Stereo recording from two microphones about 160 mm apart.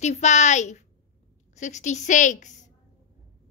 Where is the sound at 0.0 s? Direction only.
45° left (ahead or behind).